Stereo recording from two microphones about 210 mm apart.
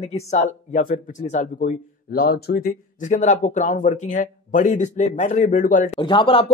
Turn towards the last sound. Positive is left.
turn(degrees=25)  # may be behind; listen again after turning